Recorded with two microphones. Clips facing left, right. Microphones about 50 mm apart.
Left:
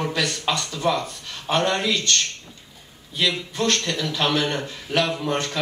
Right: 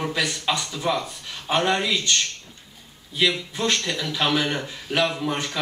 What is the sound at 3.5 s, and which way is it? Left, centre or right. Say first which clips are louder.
Speech: left 1 dB; centre.